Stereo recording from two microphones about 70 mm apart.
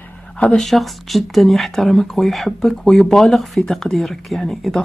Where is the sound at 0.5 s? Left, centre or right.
Centre.